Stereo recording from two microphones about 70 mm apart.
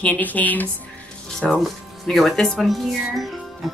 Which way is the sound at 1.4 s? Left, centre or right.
Centre.